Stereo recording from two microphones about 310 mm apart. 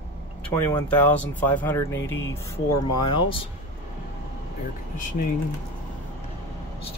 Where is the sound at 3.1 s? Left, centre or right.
Centre.